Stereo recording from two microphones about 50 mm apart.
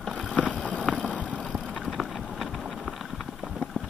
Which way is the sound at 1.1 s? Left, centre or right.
Left.